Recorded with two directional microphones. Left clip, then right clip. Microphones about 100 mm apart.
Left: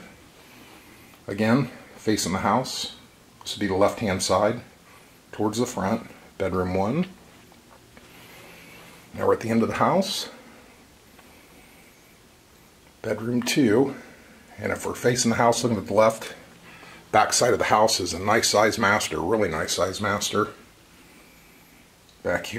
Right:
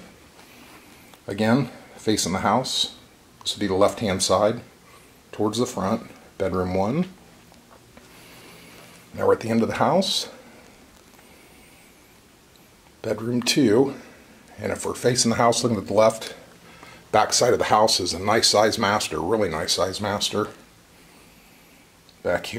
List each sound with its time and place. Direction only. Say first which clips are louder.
1.2 s speech: right 1 dB; 15° right (ahead or behind)
9.1 s speech: right 2 dB; 10° right (ahead or behind)
13.0 s speech: right 2 dB; 15° right (ahead or behind)
22.2 s speech: right 2 dB; 10° right (ahead or behind)